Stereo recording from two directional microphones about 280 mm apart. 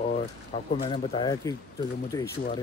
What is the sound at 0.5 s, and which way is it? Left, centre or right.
Speech, centre.